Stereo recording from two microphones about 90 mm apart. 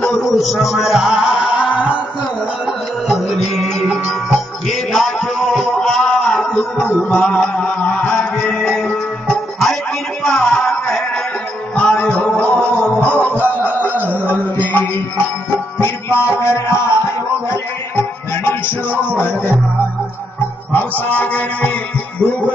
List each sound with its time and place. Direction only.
0.0 s music: centre (ahead or behind); by 18.9 s 20° left (ahead or behind)
19.1 s speech: 20° left (ahead or behind)
21.0 s music: 20° left (ahead or behind)